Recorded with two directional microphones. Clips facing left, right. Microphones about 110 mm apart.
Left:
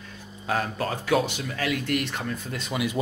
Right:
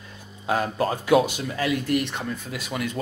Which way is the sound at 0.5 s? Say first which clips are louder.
Right 3 dB; 25° right (ahead or behind).